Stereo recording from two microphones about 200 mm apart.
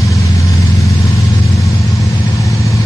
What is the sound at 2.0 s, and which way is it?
Vehicle, 15° left (ahead or behind).